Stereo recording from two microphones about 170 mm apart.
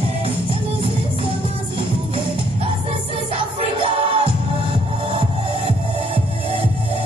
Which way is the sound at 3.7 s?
30° right (ahead or behind).